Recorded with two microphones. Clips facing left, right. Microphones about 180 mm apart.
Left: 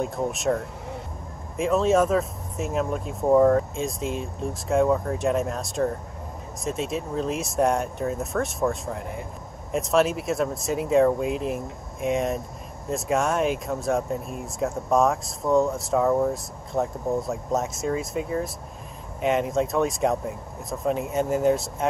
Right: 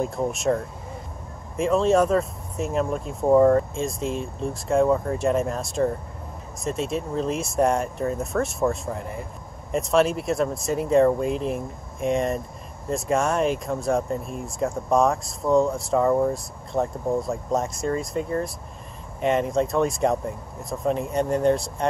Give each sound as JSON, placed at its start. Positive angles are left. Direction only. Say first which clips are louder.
{"t": 0.0, "sound": "speech", "louder": "right 1 dB", "side_deg": 0}
{"t": 1.6, "sound": "speech", "louder": "right 1 dB", "side_deg": 0}